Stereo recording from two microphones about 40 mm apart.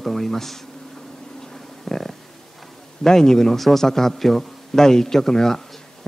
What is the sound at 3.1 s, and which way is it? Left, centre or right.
A man's voice, centre.